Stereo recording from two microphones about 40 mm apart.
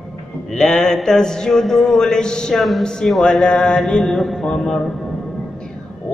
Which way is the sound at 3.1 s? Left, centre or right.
Centre.